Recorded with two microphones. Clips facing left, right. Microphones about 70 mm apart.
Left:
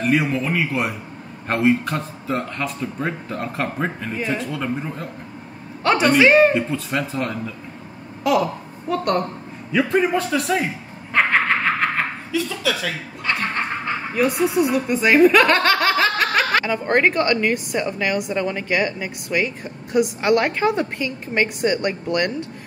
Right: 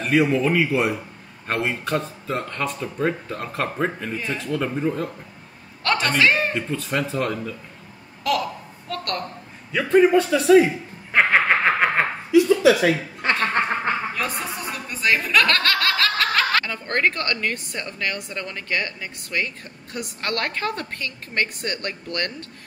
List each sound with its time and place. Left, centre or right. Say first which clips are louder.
0.0 s speech: right 1 dB; centre
8.2 s a woman's voice: left 4 dB; centre
9.7 s speech: right 2 dB; centre
11.1 s snicker: even; centre
12.8 s chuckle: right 5 dB; right
14.1 s speech: left 9 dB; centre
14.9 s speech: left 7 dB; centre